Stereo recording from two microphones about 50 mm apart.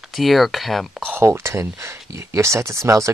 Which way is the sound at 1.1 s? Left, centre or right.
Right.